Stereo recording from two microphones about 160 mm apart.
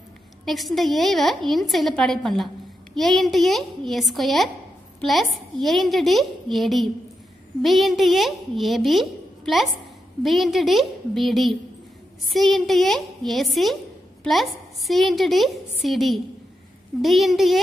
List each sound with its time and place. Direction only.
0.5 s a woman's voice: centre (ahead or behind)